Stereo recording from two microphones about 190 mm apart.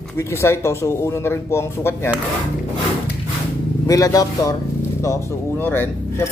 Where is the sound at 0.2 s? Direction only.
15° left (ahead or behind).